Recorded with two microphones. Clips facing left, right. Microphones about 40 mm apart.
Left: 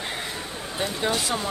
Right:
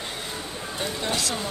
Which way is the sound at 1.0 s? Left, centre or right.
Centre.